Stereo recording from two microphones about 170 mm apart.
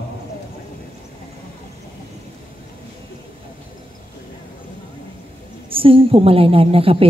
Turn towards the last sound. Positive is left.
turn(degrees=-35)  # may be behind; listen again after turning